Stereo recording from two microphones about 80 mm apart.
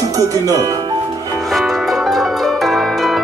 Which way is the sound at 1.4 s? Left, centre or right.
Centre.